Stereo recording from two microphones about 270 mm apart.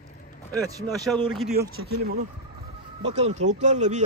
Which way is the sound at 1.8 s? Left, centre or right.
Right.